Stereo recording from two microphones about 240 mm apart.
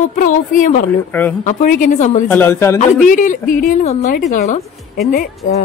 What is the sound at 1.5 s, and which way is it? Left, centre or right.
Speech, left.